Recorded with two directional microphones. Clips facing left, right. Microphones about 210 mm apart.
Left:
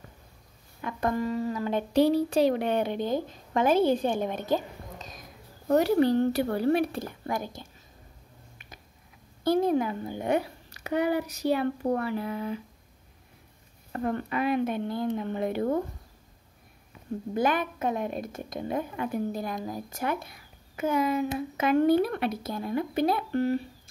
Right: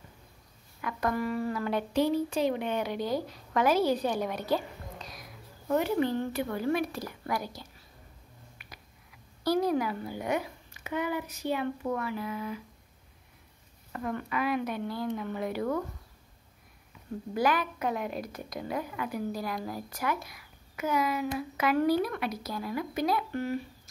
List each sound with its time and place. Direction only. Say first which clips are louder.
0.7 s a child's voice: left 2 dB; 25° left (ahead or behind)
2.0 s a child's voice: left 6 dB; 35° left (ahead or behind)
4.6 s a sound: left 1 dB; 45° left (ahead or behind)
5.7 s speech: left 5 dB; 40° left (ahead or behind)
9.4 s a child's voice: left 3 dB; 25° left (ahead or behind)
13.9 s a child's voice: left 4 dB; 35° left (ahead or behind)
17.3 s a child's voice: left 1 dB; 25° left (ahead or behind)